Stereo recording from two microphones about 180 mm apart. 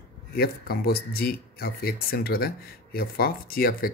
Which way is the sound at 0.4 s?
60° left (ahead or behind).